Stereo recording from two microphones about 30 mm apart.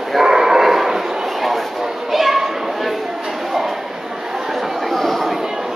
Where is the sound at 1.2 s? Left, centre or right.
Centre.